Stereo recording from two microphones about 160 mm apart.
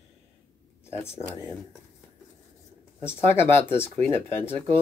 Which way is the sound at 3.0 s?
15° left (ahead or behind).